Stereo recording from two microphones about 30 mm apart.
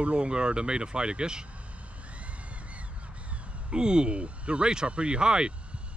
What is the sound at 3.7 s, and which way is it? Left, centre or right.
Speech, right.